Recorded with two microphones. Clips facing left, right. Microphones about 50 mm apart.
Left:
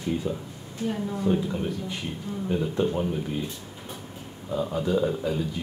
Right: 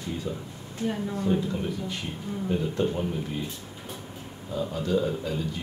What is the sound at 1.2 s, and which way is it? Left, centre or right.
Speech, centre.